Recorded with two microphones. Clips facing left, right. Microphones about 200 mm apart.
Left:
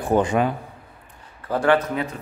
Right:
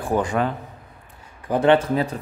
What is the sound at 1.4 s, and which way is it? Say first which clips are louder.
Speech: right 2 dB; 20° right (ahead or behind).